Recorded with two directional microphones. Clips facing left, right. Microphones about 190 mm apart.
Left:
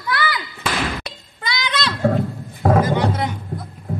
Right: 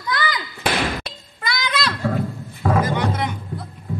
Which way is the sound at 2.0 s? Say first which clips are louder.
Left 4 dB; 45° left (ahead or behind).